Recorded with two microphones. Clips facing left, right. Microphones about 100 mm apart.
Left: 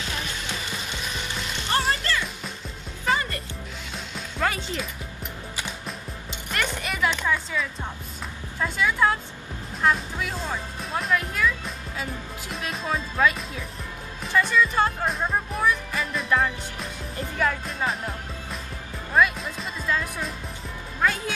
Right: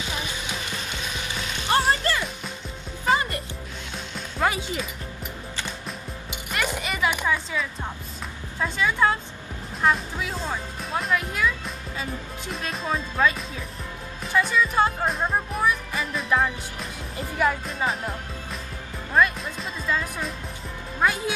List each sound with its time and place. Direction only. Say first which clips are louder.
1.7 s music: right 3 dB; 20° right (ahead or behind)
4.4 s music: right 2 dB; 15° right (ahead or behind)
6.3 s music: right 1 dB; 10° right (ahead or behind)
8.5 s speech: even; centre (ahead or behind)
14.2 s music: left 1 dB; 5° right (ahead or behind)
17.6 s music: right 1 dB; centre (ahead or behind)
21.0 s speech: right 1 dB; 15° right (ahead or behind)